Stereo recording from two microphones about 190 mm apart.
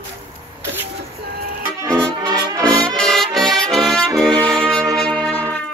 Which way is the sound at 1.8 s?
15° right (ahead or behind).